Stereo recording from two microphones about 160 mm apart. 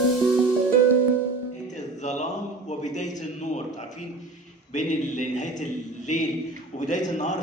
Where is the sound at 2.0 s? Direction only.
45° left (ahead or behind).